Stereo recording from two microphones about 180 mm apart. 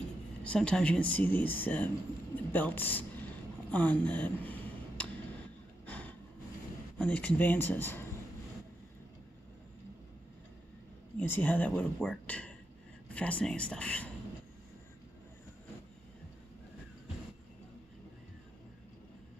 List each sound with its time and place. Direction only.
0.4 s speech: 5° left (ahead or behind)
5.9 s a sound: 10° left (ahead or behind)
7.0 s speech: 10° left (ahead or behind)
11.1 s speech: 10° left (ahead or behind)